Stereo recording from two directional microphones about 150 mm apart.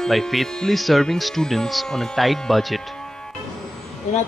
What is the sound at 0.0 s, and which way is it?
Speech, centre (ahead or behind).